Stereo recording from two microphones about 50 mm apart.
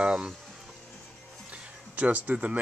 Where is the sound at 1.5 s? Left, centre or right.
Right.